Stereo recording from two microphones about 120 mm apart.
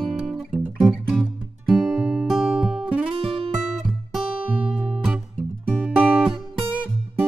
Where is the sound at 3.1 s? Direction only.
50° right (ahead or behind).